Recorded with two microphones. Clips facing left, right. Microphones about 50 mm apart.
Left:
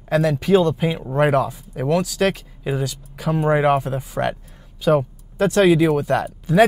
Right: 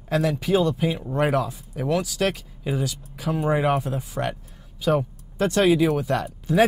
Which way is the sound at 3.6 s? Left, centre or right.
Centre.